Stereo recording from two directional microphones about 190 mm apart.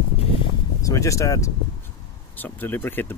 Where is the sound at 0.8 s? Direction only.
15° left (ahead or behind).